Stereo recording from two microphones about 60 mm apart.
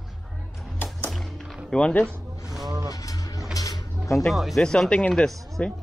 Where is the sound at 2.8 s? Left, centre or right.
Left.